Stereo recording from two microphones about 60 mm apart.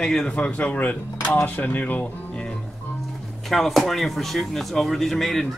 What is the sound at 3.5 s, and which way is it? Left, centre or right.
Speech, centre.